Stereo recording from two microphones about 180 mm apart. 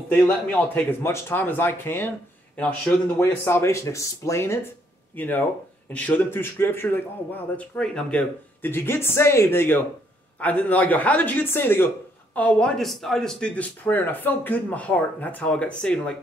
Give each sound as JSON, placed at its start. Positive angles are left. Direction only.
{"t": 0.1, "sound": "speech", "side_deg": 5}